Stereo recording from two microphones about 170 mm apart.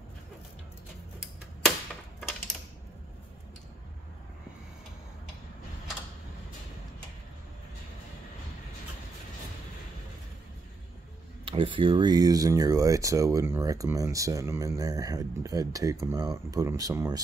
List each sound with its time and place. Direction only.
11.4 s speech: 30° right (ahead or behind)